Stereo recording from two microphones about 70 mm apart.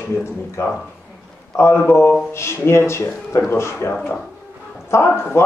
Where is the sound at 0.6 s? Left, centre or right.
Left.